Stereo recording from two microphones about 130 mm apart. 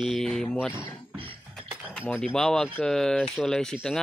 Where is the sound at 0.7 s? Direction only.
40° right (ahead or behind).